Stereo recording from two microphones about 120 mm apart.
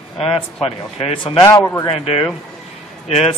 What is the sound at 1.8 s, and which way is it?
Speech, 50° left (ahead or behind).